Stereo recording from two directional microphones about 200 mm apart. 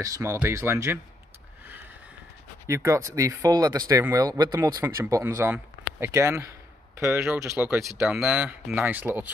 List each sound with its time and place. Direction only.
0.0 s speech: 15° right (ahead or behind)
2.6 s speech: 15° right (ahead or behind)